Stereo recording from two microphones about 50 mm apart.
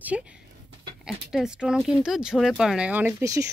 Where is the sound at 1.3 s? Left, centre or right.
Centre.